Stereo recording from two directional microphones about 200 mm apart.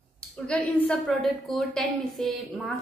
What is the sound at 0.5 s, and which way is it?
A woman's voice, 5° left (ahead or behind).